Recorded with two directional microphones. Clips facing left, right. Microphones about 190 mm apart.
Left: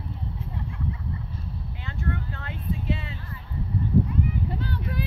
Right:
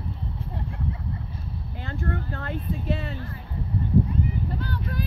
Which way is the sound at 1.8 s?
45° right (ahead or behind).